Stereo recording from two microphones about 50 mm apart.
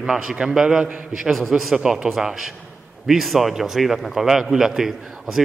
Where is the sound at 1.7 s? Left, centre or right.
Centre.